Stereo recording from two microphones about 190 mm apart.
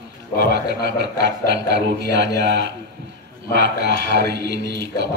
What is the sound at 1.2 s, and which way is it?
Music, 65° right (ahead or behind).